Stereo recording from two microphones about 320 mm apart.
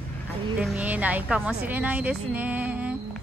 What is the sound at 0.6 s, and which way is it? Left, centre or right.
Speech, centre.